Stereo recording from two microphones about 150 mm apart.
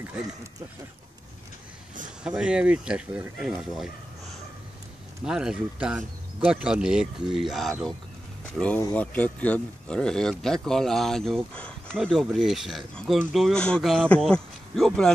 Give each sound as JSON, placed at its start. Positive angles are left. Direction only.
{"t": 2.2, "sound": "speech", "side_deg": -5}
{"t": 5.2, "sound": "speech", "side_deg": -5}